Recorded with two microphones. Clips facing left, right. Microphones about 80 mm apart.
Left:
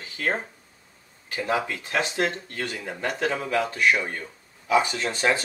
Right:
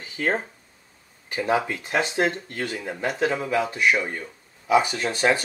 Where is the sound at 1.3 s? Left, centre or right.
Centre.